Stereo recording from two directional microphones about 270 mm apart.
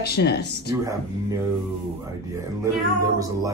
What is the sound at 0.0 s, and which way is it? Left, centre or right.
Speech, left.